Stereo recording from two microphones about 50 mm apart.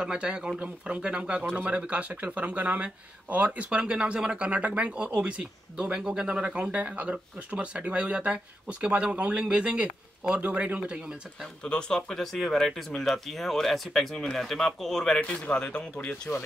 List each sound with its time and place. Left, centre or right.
0.0 s speech: centre
1.4 s speech: right
1.8 s speech: right
10.8 s speech: centre
11.6 s speech: centre
15.1 s speech: left
16.3 s speech: left